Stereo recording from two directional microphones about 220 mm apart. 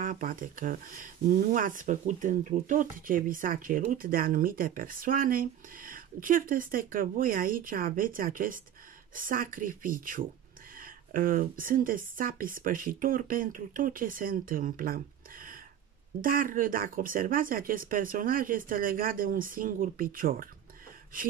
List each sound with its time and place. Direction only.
0.0 s speech: 40° right (ahead or behind)